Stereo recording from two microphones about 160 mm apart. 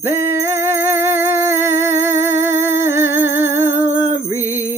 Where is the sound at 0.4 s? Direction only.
15° right (ahead or behind).